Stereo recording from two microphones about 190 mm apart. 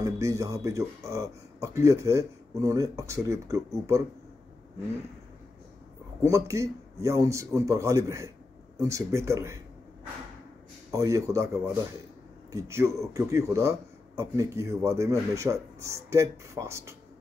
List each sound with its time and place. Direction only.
0.0 s speech: 15° right (ahead or behind)
6.2 s speech: 15° right (ahead or behind)
10.9 s speech: 15° right (ahead or behind)